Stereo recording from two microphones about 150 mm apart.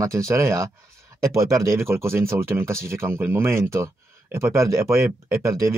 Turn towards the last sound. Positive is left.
turn(degrees=-20)  # may be behind; listen again after turning